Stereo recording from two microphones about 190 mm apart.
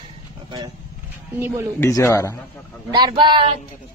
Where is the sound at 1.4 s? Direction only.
15° right (ahead or behind).